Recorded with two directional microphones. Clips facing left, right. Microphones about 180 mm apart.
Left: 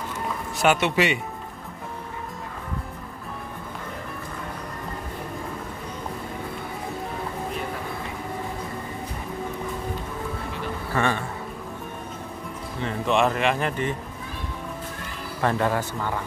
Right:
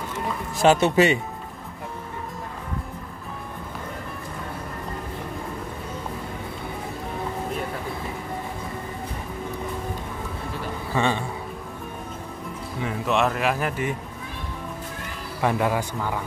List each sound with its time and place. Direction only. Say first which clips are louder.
0.7 s speech: right 4 dB; 40° right (ahead or behind)
10.9 s a man's voice: right 1 dB; 15° right (ahead or behind)
12.8 s speech: left 1 dB; 5° right (ahead or behind)
15.4 s a man's voice: right 1 dB; 10° right (ahead or behind)